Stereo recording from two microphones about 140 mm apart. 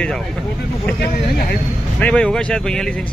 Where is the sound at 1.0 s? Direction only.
90° left.